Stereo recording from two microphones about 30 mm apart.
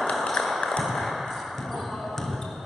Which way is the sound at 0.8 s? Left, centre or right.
Centre.